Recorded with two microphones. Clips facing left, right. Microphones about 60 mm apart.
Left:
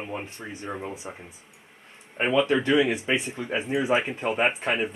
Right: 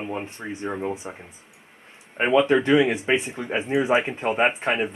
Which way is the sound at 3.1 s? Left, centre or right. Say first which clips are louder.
Right 3 dB; right.